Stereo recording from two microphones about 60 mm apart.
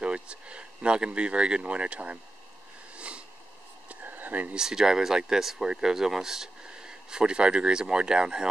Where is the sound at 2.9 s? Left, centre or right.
Centre.